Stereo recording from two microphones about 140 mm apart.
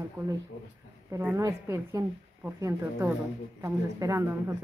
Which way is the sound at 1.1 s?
20° right (ahead or behind).